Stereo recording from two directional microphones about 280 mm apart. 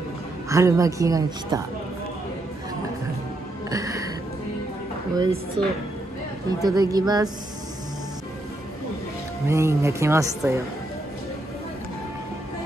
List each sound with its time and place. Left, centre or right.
0.5 s speech: centre
3.7 s music: centre
5.1 s speech: centre
6.6 s speech: centre
9.5 s speech: centre